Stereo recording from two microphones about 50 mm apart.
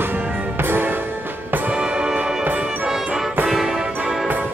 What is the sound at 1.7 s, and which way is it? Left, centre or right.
Music, centre.